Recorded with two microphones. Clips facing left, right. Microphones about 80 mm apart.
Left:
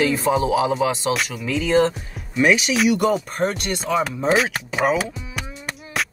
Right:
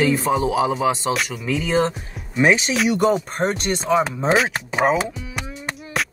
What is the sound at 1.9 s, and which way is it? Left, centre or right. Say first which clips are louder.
Speech: even; right.